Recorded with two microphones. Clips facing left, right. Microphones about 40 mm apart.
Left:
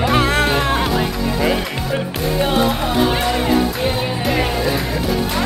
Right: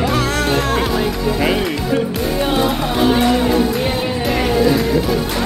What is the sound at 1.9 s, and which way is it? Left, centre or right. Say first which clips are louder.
Speech: even; centre.